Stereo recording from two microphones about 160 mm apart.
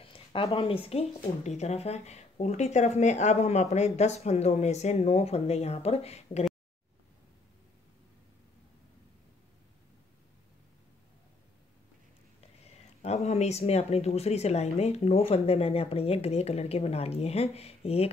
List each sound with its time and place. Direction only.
0.0 s speech: 35° left (ahead or behind)
12.4 s speech: 40° left (ahead or behind)